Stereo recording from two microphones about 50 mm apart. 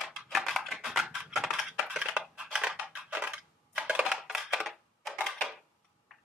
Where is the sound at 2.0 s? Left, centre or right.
Centre.